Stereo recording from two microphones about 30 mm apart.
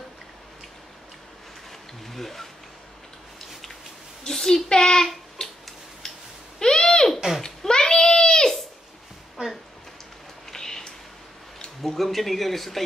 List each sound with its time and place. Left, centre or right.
2.0 s speech: centre
4.3 s a child's voice: centre
5.4 s tick-tock: left
6.6 s a sound: left
10.5 s a sound: centre
11.8 s speech: centre